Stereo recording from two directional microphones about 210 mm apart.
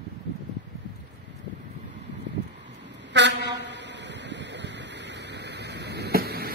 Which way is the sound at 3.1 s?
55° right (ahead or behind).